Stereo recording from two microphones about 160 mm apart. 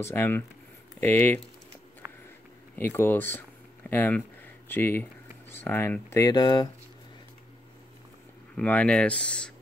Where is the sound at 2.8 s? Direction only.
10° left (ahead or behind).